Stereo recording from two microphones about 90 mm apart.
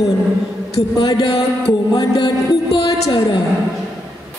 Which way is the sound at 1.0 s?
50° left (ahead or behind).